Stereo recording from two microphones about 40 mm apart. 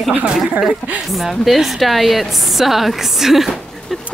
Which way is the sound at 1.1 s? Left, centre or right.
Centre.